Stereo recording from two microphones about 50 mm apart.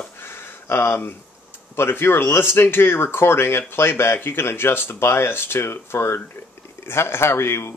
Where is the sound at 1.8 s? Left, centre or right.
Left.